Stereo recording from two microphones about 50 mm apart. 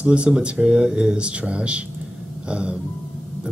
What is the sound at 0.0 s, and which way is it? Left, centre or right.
Speech, right.